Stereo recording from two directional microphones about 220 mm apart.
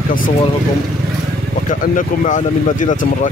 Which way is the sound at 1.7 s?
35° left (ahead or behind).